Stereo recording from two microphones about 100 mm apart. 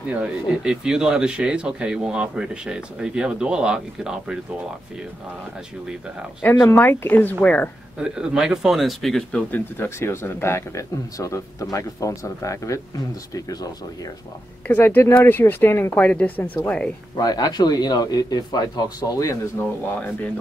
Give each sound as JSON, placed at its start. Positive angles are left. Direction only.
{"t": 0.2, "sound": "speech", "side_deg": -5}
{"t": 6.7, "sound": "a woman's voice", "side_deg": 20}
{"t": 8.0, "sound": "speech", "side_deg": -5}
{"t": 9.5, "sound": "speech", "side_deg": 25}
{"t": 14.7, "sound": "speech", "side_deg": 20}
{"t": 17.2, "sound": "speech", "side_deg": 40}